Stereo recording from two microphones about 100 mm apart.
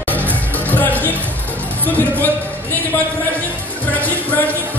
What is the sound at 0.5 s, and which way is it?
Music, 15° left (ahead or behind).